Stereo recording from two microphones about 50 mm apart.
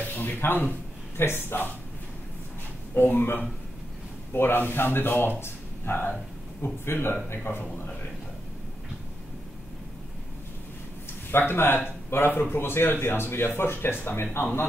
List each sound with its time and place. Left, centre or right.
0.0 s speech: left
2.9 s speech: left
5.4 s a sound: left
6.6 s speech: left
11.3 s speech: left